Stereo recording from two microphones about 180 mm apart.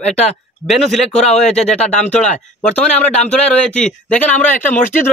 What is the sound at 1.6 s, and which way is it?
Speech, 40° left (ahead or behind).